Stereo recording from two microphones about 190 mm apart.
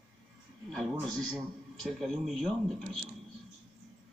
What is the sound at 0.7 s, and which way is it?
A man's voice, centre (ahead or behind).